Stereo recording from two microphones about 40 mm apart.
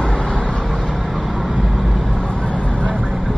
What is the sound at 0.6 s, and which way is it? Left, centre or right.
Vehicle, centre.